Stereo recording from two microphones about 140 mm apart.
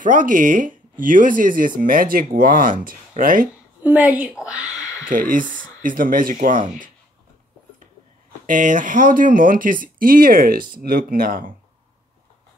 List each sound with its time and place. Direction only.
0.0 s speech: 70° right (ahead or behind)
1.8 s speech: 90° right
3.8 s a woman's voice: 10° right (ahead or behind)
5.0 s speech: 80° right
8.5 s speech: 70° right (ahead or behind); by 11.5 s 90° right